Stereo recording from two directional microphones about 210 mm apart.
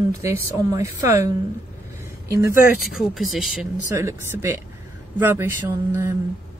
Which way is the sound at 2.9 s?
Centre (ahead or behind).